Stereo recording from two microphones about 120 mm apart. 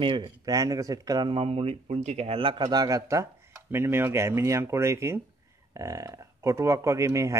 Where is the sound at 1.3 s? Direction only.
55° right (ahead or behind).